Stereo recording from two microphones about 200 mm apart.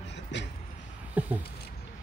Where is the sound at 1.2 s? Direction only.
10° right (ahead or behind).